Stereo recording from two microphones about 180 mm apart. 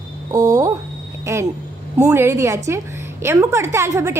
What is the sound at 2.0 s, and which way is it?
A woman's voice, 15° right (ahead or behind).